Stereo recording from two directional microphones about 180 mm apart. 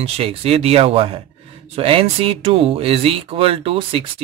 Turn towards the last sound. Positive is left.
turn(degrees=-30)  # may be behind; listen again after turning